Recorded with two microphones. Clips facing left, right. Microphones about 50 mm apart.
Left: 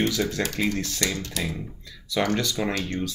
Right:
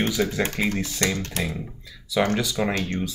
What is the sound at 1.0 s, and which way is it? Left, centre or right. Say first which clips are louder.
Speech: right 4 dB; right.